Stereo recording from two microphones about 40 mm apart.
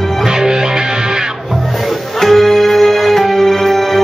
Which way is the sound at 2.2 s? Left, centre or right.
Centre.